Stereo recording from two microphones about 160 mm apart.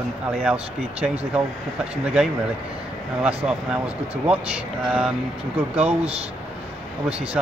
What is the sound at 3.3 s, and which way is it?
Speech, 5° right (ahead or behind).